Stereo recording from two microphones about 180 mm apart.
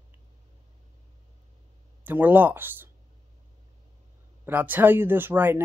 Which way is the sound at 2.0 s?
10° right (ahead or behind).